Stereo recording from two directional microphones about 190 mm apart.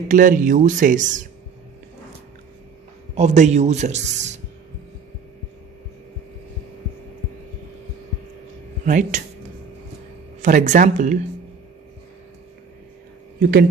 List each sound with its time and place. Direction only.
0.1 s speech: 45° right (ahead or behind)
3.2 s speech: 35° right (ahead or behind)
8.8 s speech: 40° right (ahead or behind)
10.4 s speech: 40° right (ahead or behind)
13.4 s speech: 55° right (ahead or behind)